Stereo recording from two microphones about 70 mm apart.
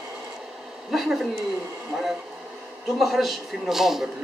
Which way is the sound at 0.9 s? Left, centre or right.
Centre.